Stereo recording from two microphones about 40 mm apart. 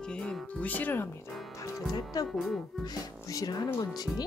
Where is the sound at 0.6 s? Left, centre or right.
Left.